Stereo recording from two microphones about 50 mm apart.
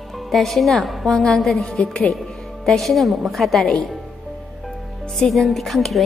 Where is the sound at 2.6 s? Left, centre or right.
Centre.